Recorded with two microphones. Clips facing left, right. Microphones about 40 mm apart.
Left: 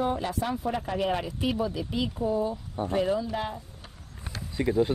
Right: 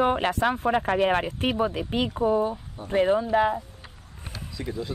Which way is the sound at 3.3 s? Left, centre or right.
Right.